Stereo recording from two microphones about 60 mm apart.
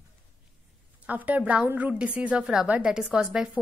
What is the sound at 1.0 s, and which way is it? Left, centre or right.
A woman's voice, right.